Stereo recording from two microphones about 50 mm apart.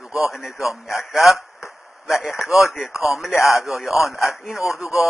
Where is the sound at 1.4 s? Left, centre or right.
Left.